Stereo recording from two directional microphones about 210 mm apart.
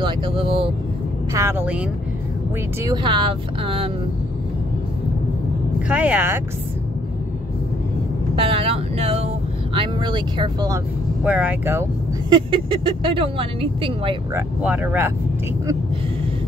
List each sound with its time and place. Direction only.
0.0 s speech: 25° right (ahead or behind)
1.3 s speech: 10° right (ahead or behind)
2.8 s speech: 20° right (ahead or behind)
5.9 s speech: 5° right (ahead or behind)
8.4 s speech: 25° right (ahead or behind)
11.2 s speech: 5° right (ahead or behind)
12.3 s speech: 25° right (ahead or behind)
14.3 s speech: 10° right (ahead or behind)